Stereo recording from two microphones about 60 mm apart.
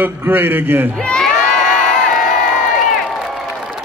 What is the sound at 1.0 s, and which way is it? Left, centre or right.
Crowd, centre.